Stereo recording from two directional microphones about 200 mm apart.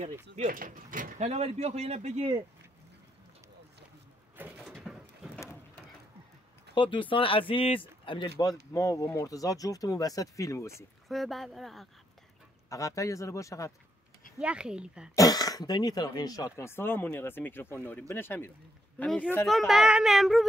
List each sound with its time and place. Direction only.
0.4 s speech: 45° right (ahead or behind)
4.4 s a sound: 5° right (ahead or behind)
6.7 s speech: 25° left (ahead or behind)
11.1 s speech: centre (ahead or behind)
12.6 s speech: 15° left (ahead or behind)
14.4 s speech: 5° right (ahead or behind)
15.1 s speech: 20° left (ahead or behind); by 20.4 s centre (ahead or behind)